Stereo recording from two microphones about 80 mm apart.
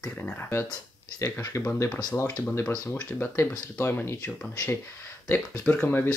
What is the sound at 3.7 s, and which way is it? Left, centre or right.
Speech, left.